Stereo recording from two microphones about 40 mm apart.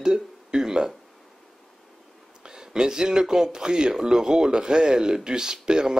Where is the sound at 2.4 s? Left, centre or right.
Centre.